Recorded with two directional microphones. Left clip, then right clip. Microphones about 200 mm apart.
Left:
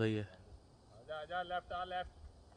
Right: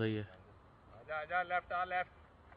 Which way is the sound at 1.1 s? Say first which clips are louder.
Right 5 dB; 70° left (ahead or behind).